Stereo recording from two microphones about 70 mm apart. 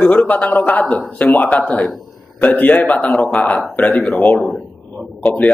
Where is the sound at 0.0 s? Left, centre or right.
Centre.